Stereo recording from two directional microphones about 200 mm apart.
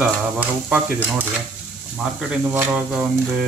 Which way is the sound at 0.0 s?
5° right (ahead or behind).